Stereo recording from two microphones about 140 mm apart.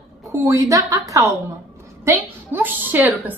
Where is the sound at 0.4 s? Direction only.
20° right (ahead or behind).